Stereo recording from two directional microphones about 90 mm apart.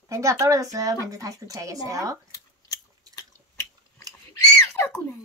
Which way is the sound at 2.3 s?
40° left (ahead or behind).